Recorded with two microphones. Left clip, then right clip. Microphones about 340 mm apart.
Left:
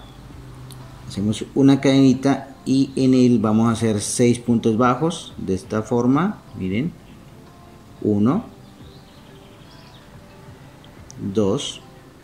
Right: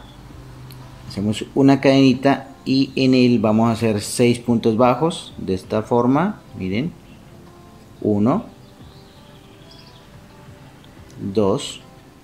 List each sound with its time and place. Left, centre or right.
1.1 s speech: centre
8.1 s speech: centre
11.3 s speech: centre